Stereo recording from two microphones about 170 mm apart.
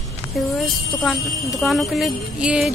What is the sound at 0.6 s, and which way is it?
Speech, centre (ahead or behind).